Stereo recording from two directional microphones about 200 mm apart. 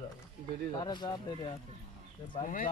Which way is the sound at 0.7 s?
20° left (ahead or behind).